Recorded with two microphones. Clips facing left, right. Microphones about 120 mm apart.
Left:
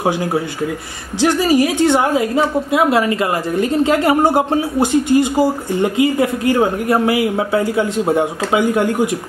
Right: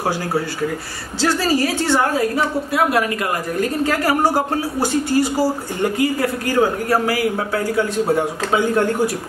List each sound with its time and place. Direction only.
1.2 s a woman's voice: 15° left (ahead or behind)